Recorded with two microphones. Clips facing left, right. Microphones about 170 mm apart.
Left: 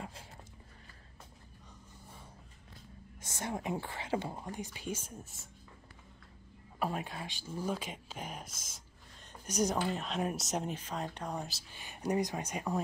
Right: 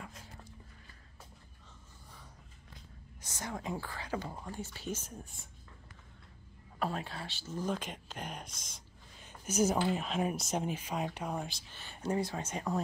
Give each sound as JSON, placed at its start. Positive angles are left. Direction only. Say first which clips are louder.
{"t": 0.0, "sound": "dog", "louder": "left 3 dB", "side_deg": 30}
{"t": 3.2, "sound": "speech", "louder": "left 3 dB", "side_deg": 25}
{"t": 6.8, "sound": "speech", "louder": "even", "side_deg": 15}
{"t": 11.8, "sound": "speech", "louder": "left 1 dB", "side_deg": 15}